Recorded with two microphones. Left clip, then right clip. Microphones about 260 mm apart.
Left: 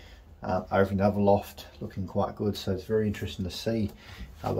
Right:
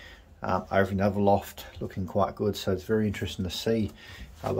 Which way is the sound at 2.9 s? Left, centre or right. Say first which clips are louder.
Even; right.